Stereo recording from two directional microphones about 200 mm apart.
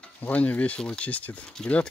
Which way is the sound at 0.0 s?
5° left (ahead or behind).